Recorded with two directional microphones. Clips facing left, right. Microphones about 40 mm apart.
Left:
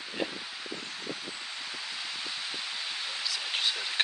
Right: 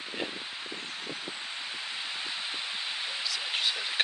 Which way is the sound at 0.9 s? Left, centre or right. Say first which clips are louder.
Even; right.